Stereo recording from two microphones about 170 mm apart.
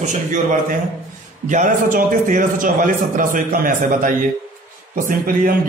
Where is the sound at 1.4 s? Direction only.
50° right (ahead or behind).